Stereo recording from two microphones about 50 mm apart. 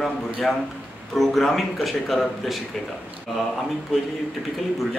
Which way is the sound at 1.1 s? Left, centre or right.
Centre.